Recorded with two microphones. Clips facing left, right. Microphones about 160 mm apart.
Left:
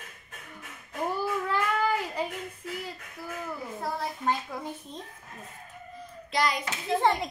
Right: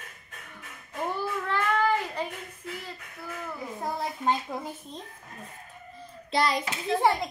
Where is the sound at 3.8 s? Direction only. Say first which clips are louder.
Right 2 dB; 20° right (ahead or behind).